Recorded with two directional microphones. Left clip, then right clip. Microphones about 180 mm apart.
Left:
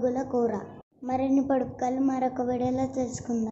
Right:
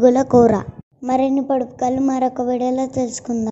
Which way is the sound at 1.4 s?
25° right (ahead or behind).